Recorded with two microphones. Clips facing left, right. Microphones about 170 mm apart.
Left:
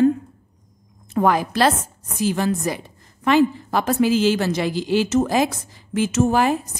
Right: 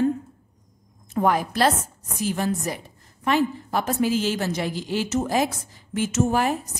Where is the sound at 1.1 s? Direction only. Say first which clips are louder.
Left 3 dB; 90° left.